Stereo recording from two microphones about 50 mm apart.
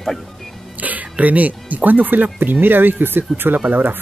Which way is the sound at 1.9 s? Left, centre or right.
Right.